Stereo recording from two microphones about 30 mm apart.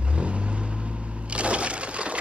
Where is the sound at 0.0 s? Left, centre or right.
Right.